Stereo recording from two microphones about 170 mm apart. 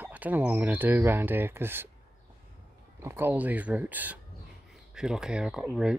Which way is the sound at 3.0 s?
15° right (ahead or behind).